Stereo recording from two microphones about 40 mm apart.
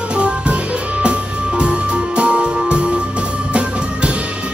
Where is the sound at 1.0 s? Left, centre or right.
Right.